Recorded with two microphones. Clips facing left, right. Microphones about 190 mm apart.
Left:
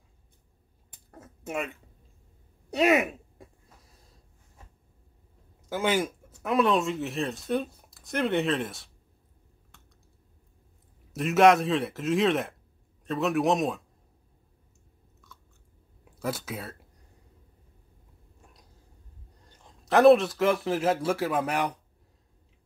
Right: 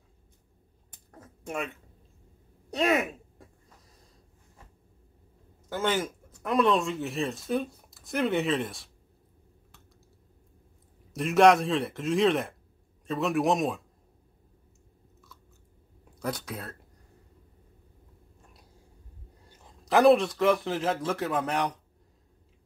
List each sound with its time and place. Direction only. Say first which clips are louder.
1.1 s speech: left 2 dB; 5° left (ahead or behind)
2.7 s speech: left 3 dB; 5° left (ahead or behind)
5.7 s speech: left 2 dB; 10° left (ahead or behind)
11.1 s speech: even; centre (ahead or behind)
16.2 s speech: left 1 dB; 5° left (ahead or behind)
19.8 s speech: left 2 dB; centre (ahead or behind)